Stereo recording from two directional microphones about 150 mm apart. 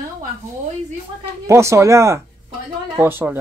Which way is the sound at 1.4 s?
20° right (ahead or behind).